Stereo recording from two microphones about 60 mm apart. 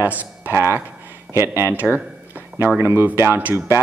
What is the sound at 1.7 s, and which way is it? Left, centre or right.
Speech, right.